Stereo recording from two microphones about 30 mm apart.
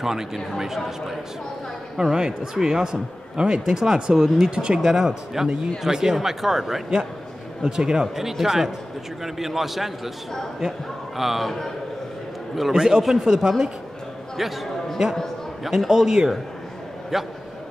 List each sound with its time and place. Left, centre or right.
0.0 s speech: centre
2.0 s speech: centre
7.6 s speech: right
8.3 s a man's voice: centre
10.6 s speech: right
11.1 s a man's voice: centre
11.4 s a man's voice: centre
12.7 s a man's voice: right; by 15.9 s centre
15.9 s speech: centre
17.1 s a man's voice: centre